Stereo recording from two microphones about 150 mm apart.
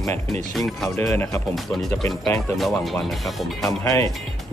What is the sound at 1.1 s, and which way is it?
Speech, 15° left (ahead or behind).